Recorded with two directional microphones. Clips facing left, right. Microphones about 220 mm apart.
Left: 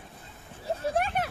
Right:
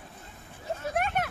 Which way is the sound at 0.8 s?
30° left (ahead or behind).